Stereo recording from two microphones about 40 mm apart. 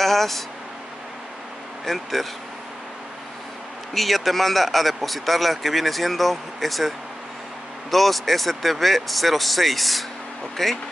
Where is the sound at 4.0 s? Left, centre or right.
Centre.